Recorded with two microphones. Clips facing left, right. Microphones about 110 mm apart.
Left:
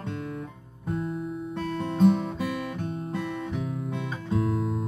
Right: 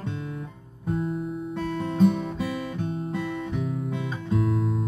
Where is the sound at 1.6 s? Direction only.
Centre (ahead or behind).